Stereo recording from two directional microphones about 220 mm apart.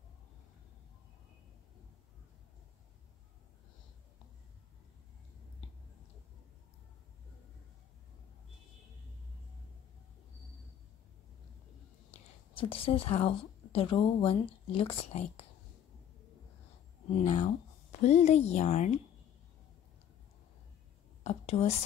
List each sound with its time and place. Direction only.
12.1 s a woman's voice: 25° left (ahead or behind)
17.2 s speech: 30° left (ahead or behind)
21.2 s speech: 30° left (ahead or behind)